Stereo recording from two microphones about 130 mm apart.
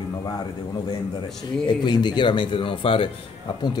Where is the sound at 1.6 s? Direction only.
35° left (ahead or behind).